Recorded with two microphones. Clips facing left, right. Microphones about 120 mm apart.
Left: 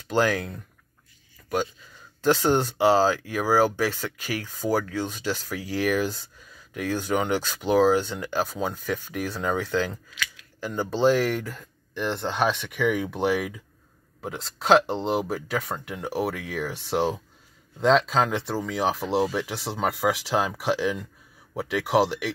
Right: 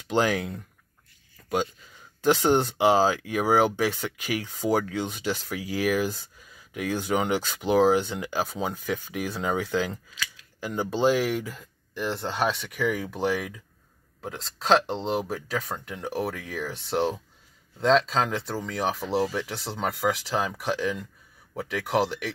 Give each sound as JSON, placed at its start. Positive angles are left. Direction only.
{"t": 0.1, "sound": "speech", "side_deg": -15}
{"t": 2.2, "sound": "speech", "side_deg": -15}